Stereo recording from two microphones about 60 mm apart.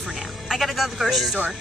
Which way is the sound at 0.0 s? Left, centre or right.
Centre.